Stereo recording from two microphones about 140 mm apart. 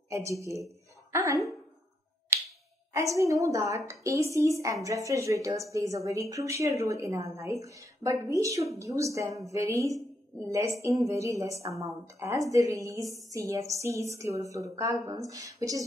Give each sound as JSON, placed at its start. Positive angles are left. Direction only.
{"t": 1.1, "sound": "speech", "side_deg": -20}
{"t": 2.9, "sound": "speech", "side_deg": -20}